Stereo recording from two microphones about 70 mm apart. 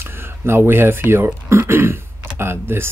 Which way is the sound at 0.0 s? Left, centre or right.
Right.